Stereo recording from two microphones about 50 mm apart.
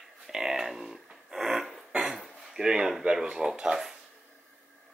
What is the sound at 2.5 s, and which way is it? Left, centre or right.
Speech, centre.